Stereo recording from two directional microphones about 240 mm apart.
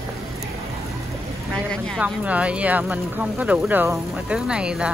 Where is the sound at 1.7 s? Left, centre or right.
Centre.